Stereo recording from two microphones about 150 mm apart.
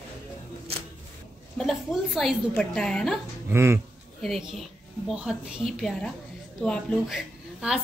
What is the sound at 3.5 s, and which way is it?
Speech, 15° right (ahead or behind).